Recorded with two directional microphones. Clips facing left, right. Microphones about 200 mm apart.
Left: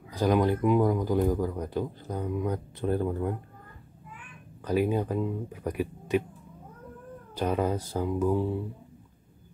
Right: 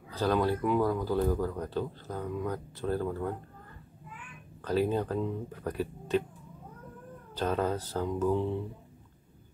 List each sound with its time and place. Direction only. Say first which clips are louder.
0.1 s speech: left 3 dB; 15° left (ahead or behind)
4.6 s speech: left 2 dB; 10° left (ahead or behind)
7.3 s speech: left 2 dB; 15° left (ahead or behind)